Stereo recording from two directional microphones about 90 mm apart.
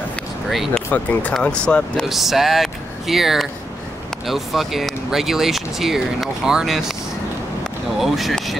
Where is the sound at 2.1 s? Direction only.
Centre (ahead or behind).